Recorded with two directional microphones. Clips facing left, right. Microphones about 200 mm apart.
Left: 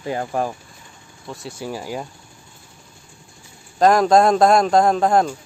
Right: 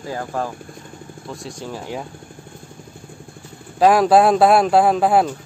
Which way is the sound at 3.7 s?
5° right (ahead or behind).